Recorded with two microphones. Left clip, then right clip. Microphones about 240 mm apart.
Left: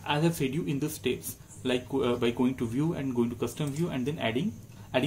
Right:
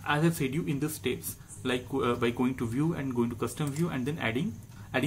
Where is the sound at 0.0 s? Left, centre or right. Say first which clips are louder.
Even; centre.